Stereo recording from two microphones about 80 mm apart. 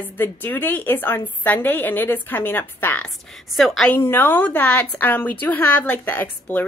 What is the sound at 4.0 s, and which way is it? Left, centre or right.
Speech, left.